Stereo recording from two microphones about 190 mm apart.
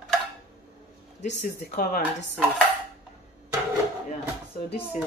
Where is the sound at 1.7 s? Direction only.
45° left (ahead or behind).